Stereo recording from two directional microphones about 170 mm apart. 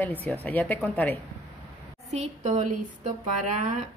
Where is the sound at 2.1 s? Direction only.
45° right (ahead or behind).